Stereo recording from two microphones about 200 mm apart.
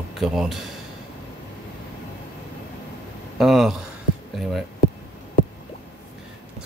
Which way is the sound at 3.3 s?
Centre (ahead or behind).